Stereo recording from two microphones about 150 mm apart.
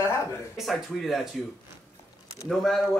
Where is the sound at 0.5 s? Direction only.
Centre (ahead or behind).